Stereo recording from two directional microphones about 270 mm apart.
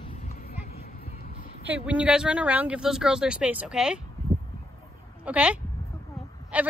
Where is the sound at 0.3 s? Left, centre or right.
Left.